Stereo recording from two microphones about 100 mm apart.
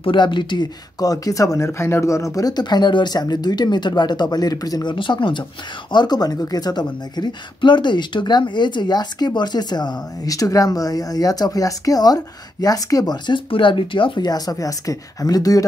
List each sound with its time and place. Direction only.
0.0 s speech: 55° left (ahead or behind)
4.9 s speech: 55° left (ahead or behind)
13.5 s speech: 60° left (ahead or behind); by 15.6 s 40° left (ahead or behind)